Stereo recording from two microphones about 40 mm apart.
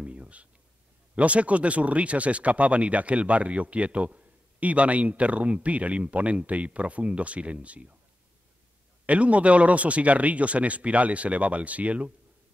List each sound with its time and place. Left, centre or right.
0.0 s a sound: right
1.1 s speech: right
9.0 s speech: right